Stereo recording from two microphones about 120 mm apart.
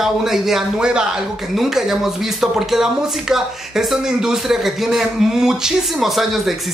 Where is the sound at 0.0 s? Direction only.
5° right (ahead or behind).